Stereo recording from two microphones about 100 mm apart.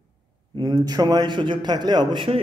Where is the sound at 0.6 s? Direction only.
40° right (ahead or behind).